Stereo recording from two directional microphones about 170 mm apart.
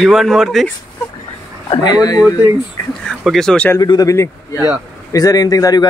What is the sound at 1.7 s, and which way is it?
Speech, 25° left (ahead or behind).